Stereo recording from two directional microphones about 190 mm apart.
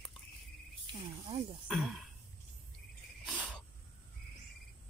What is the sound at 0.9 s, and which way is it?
Cricket, 25° right (ahead or behind).